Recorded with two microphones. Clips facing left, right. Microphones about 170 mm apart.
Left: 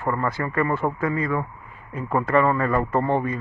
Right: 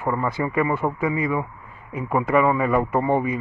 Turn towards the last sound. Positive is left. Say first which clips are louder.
# right 1 dB
turn(degrees=-10)  # may be behind; listen again after turning